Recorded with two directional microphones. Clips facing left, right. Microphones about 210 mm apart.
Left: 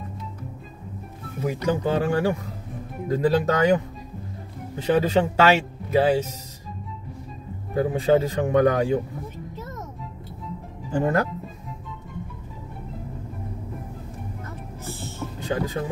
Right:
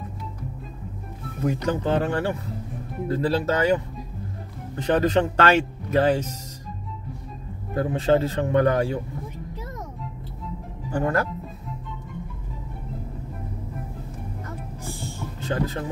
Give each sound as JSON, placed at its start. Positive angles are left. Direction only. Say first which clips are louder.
{"t": 1.4, "sound": "speech", "louder": "even", "side_deg": 10}
{"t": 4.7, "sound": "speech", "louder": "even", "side_deg": 10}
{"t": 7.7, "sound": "speech", "louder": "left 1 dB", "side_deg": 15}
{"t": 10.9, "sound": "speech", "louder": "left 2 dB", "side_deg": 20}
{"t": 14.9, "sound": "music", "louder": "even", "side_deg": -15}
{"t": 15.4, "sound": "speech", "louder": "even", "side_deg": 15}